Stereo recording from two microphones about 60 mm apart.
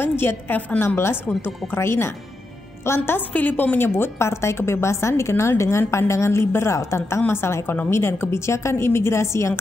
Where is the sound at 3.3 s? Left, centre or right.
Left.